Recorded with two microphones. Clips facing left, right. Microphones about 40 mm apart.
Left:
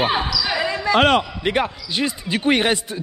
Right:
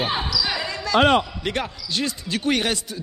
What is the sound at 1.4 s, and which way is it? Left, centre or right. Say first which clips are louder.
Speech: left 6 dB; centre.